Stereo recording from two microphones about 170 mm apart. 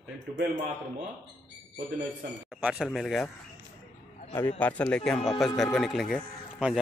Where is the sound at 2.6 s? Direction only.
5° right (ahead or behind).